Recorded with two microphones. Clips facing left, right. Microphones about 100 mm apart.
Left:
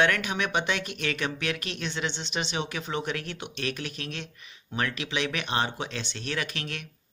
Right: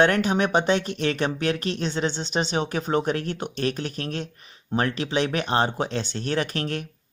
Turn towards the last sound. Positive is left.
turn(degrees=-40)  # may be behind; listen again after turning